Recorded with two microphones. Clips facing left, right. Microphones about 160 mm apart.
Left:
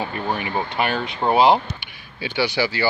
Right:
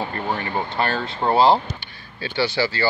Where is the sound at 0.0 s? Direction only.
15° left (ahead or behind).